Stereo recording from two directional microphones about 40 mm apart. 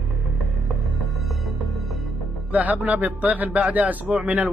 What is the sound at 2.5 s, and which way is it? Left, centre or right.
A man's voice, right.